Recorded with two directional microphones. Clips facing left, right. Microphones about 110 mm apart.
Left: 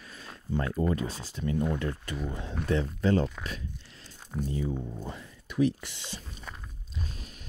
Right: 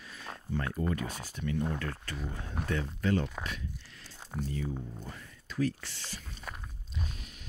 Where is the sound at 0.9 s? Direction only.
30° left (ahead or behind).